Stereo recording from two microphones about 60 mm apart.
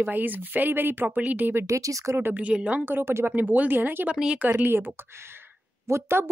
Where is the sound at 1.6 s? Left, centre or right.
Right.